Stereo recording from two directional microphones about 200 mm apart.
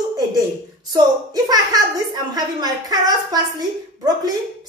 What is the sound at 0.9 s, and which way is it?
A woman's voice, 20° right (ahead or behind).